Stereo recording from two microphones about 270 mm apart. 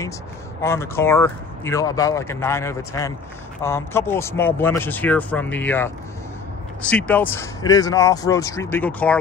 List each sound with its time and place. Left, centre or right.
0.6 s speech: centre